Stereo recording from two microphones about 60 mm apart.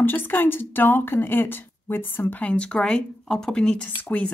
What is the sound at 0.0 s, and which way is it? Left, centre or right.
Speech, left.